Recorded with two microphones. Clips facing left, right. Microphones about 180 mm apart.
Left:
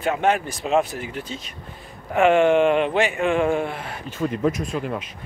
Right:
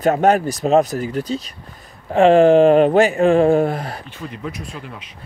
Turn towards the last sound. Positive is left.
turn(degrees=50)  # may be behind; listen again after turning